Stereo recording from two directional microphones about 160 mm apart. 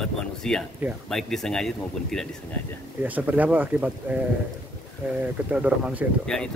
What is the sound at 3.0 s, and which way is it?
Speech, 10° right (ahead or behind).